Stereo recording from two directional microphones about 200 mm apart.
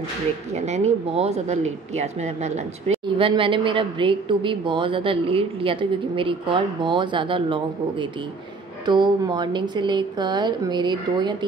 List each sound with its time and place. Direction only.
0.6 s a woman's voice: 35° right (ahead or behind)